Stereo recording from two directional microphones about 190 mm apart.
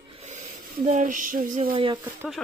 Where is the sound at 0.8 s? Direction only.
40° right (ahead or behind).